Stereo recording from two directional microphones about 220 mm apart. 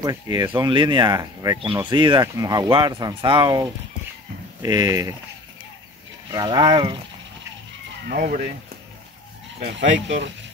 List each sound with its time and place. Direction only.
0.0 s speech: 15° right (ahead or behind)
6.3 s speech: 20° right (ahead or behind)
8.1 s speech: 40° right (ahead or behind)
9.6 s speech: 55° right (ahead or behind)